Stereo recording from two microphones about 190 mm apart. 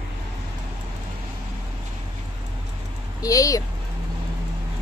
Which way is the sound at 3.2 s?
20° left (ahead or behind).